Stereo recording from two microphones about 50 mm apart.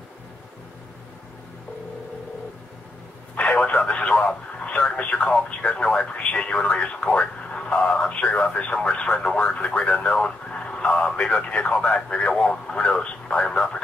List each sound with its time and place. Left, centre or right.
3.3 s radio: left
5.6 s speech: left